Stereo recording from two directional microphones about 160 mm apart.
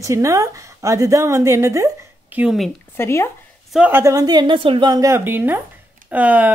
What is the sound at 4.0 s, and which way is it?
A woman's voice, 20° right (ahead or behind).